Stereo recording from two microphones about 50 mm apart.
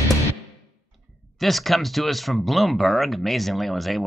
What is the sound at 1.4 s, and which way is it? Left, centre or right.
Speech, centre.